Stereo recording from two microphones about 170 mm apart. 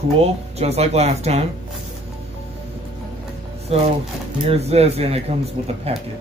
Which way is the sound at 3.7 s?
35° right (ahead or behind).